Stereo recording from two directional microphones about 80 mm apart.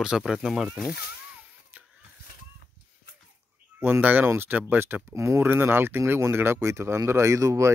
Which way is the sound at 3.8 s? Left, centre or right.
Right.